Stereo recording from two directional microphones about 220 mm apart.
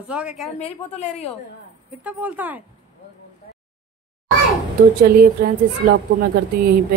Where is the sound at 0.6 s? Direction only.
30° left (ahead or behind).